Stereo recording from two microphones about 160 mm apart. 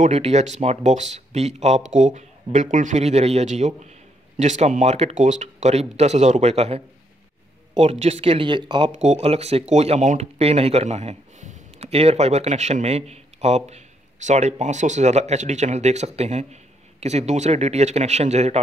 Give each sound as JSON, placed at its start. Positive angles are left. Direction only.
{"t": 0.0, "sound": "speech", "side_deg": -45}
{"t": 8.9, "sound": "speech", "side_deg": -45}